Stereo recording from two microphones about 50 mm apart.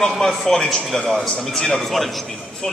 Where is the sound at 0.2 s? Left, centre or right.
Centre.